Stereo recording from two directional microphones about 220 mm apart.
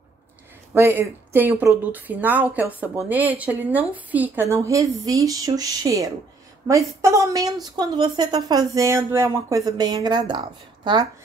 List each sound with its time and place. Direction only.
0.7 s a woman's voice: 10° right (ahead or behind)